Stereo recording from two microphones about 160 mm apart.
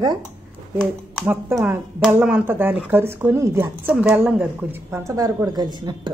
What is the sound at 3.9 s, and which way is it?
A woman's voice, 5° right (ahead or behind).